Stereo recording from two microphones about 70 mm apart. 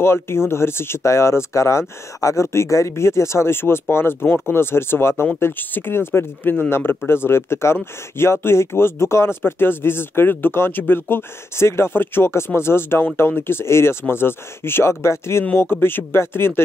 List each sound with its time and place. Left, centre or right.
0.0 s speech: left